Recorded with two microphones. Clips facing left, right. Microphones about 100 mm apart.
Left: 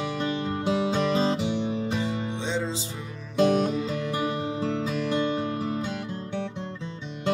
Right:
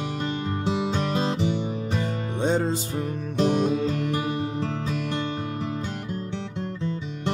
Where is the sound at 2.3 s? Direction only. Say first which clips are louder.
Right 5 dB; 50° right (ahead or behind).